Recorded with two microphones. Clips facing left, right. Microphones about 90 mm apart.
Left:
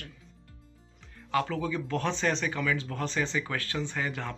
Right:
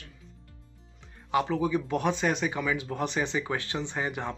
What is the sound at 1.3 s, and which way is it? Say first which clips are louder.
Speech: right 3 dB; 20° right (ahead or behind).